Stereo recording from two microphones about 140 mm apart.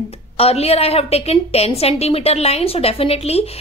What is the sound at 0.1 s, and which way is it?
A woman's voice, 45° left (ahead or behind).